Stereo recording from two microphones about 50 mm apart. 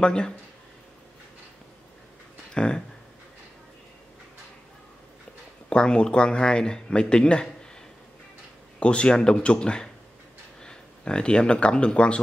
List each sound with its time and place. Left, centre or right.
0.0 s speech: centre
2.5 s speech: centre
5.7 s speech: centre
8.7 s speech: left